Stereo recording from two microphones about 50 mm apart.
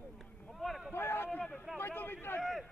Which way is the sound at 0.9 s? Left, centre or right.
Left.